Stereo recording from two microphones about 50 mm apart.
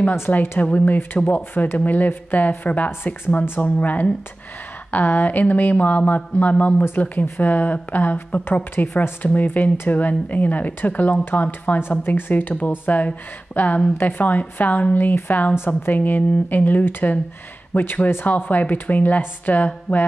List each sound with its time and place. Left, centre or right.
0.3 s speech: left